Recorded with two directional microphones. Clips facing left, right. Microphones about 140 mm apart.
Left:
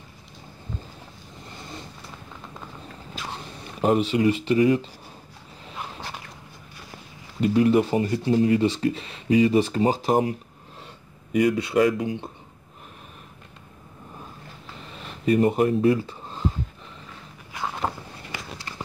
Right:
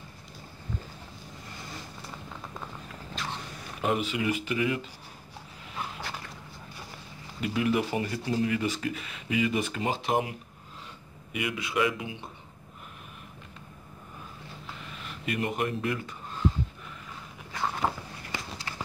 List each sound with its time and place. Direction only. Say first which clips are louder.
3.8 s speech: left 8 dB; 35° left (ahead or behind)
7.3 s speech: left 8 dB; 35° left (ahead or behind)
11.3 s speech: left 10 dB; 40° left (ahead or behind)
15.2 s speech: left 11 dB; 35° left (ahead or behind)